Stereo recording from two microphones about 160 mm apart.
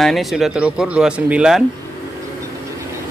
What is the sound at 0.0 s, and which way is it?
Speech, centre (ahead or behind).